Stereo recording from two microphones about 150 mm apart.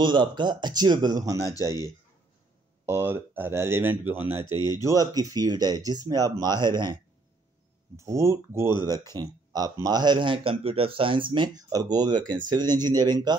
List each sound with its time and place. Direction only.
0.0 s speech: 30° right (ahead or behind)
2.9 s speech: 15° right (ahead or behind)
4.5 s speech: 25° left (ahead or behind)
4.8 s speech: 25° right (ahead or behind)
7.9 s speech: 20° right (ahead or behind)